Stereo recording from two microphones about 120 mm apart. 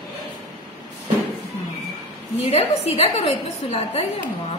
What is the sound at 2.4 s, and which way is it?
A woman's voice, 60° left (ahead or behind).